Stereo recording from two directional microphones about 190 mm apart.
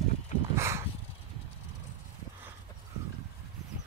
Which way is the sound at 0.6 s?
15° right (ahead or behind).